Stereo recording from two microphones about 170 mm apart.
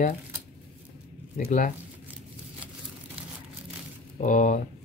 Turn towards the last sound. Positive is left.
turn(degrees=50)  # may be behind; listen again after turning